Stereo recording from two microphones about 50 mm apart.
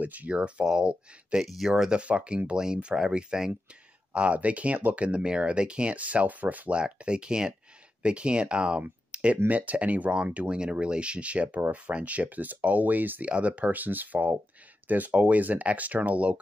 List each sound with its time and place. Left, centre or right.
0.0 s speech: right; by 1.9 s centre
1.9 s speech: right
4.1 s speech: right
6.8 s speech: right
9.1 s a sound: right
9.5 s speech: right
13.2 s speech: right